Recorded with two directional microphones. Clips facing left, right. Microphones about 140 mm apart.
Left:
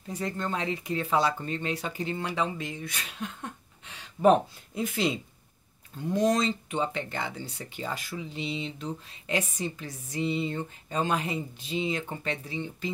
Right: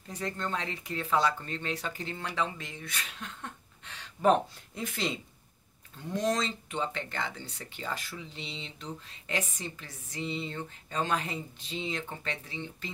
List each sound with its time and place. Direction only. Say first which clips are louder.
0.1 s a woman's voice: left 3 dB; 10° left (ahead or behind)
6.1 s a woman's voice: left 5 dB; 15° left (ahead or behind)